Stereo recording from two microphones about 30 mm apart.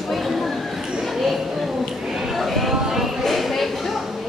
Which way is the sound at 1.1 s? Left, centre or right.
Centre.